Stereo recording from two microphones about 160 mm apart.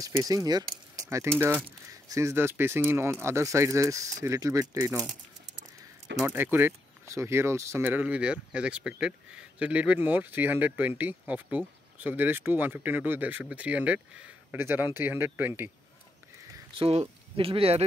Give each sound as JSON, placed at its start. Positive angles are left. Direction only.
{"t": 0.0, "sound": "speech", "side_deg": -20}
{"t": 6.2, "sound": "speech", "side_deg": -15}
{"t": 16.7, "sound": "speech", "side_deg": -40}